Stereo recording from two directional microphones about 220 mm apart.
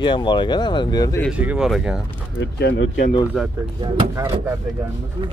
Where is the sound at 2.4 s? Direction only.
50° left (ahead or behind).